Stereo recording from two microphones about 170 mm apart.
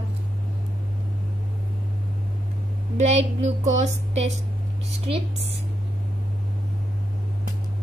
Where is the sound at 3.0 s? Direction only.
40° right (ahead or behind).